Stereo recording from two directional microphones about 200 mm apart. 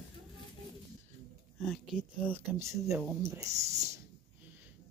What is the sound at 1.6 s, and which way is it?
Speech, 5° left (ahead or behind).